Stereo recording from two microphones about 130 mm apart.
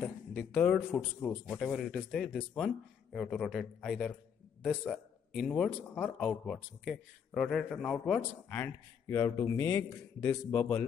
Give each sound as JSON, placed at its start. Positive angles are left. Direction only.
{"t": 0.0, "sound": "a man's voice", "side_deg": 10}
{"t": 8.2, "sound": "a man's voice", "side_deg": 15}
{"t": 10.5, "sound": "speech", "side_deg": 10}